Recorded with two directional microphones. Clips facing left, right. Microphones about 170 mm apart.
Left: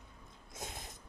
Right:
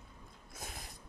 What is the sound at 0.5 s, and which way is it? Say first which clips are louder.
Sneeze: left 2 dB; 20° left (ahead or behind).